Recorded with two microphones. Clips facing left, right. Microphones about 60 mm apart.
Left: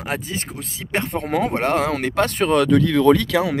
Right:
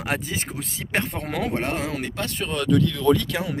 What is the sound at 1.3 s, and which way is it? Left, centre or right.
Speech, left.